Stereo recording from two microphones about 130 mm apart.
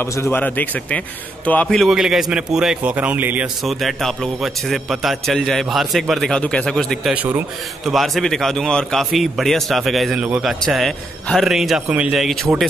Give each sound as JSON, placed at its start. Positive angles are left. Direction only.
{"t": 0.0, "sound": "a man's voice", "side_deg": 20}
{"t": 3.6, "sound": "a man's voice", "side_deg": 0}
{"t": 10.2, "sound": "a man's voice", "side_deg": -10}
{"t": 10.6, "sound": "a man's voice", "side_deg": 0}